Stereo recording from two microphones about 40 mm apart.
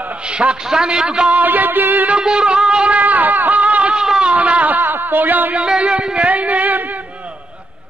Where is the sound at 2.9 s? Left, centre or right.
Right.